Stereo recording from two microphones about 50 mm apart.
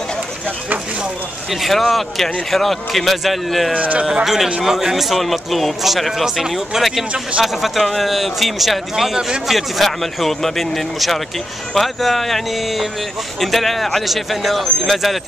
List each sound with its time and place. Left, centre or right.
1.5 s speech: centre
3.7 s speech: right
4.0 s speech: centre